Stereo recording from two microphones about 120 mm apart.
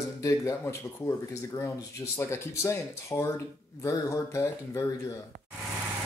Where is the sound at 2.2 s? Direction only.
20° left (ahead or behind).